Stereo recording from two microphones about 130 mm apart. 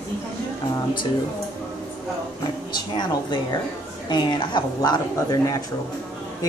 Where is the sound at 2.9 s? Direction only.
35° left (ahead or behind).